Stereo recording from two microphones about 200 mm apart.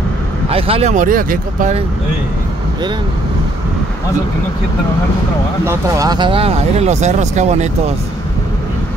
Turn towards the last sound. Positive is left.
turn(degrees=-35)  # may be behind; listen again after turning